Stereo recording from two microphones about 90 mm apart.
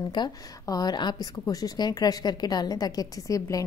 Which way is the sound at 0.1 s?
50° left (ahead or behind).